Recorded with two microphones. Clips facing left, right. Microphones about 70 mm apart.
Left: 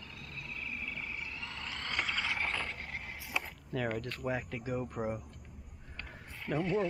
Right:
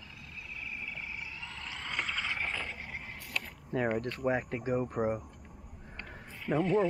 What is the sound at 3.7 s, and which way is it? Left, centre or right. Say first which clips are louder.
Speech: right 4 dB; right.